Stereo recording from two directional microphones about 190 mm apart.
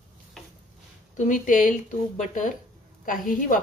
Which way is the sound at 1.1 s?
40° left (ahead or behind).